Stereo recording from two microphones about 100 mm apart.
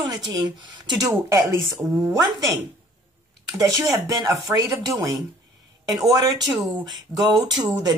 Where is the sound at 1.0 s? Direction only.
30° right (ahead or behind).